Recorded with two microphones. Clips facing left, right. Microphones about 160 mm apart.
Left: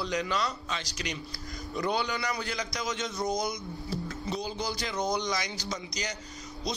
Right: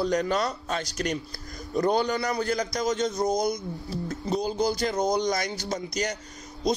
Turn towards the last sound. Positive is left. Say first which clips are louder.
# right 8 dB
turn(degrees=-50)  # may be behind; listen again after turning